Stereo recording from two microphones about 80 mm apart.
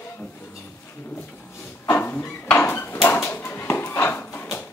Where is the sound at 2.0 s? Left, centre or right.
Left.